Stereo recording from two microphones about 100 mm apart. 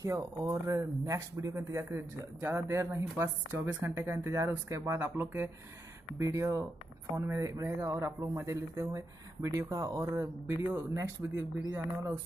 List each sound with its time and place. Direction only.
0.0 s speech: 30° right (ahead or behind)
4.9 s speech: 20° right (ahead or behind)
6.1 s speech: 35° right (ahead or behind)